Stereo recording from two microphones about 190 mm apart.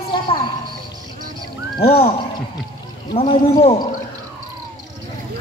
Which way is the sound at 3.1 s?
30° left (ahead or behind).